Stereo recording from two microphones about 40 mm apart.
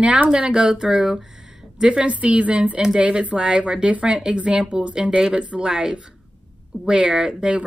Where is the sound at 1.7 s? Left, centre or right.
Right.